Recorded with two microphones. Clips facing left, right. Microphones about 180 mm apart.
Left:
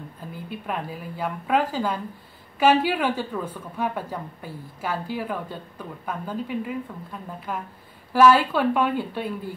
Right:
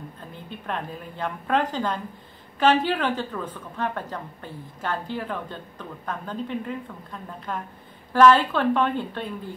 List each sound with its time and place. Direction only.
0.3 s a woman's voice: 5° left (ahead or behind)